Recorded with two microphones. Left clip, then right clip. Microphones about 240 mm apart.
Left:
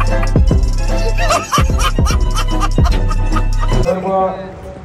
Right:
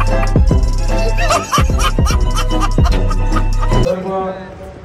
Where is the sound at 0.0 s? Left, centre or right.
Centre.